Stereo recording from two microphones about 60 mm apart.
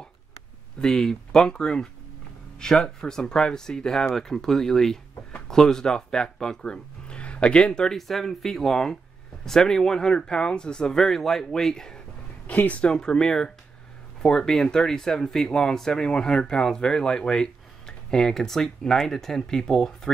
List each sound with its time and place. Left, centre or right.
0.7 s speech: centre
12.4 s speech: left
12.8 s speech: centre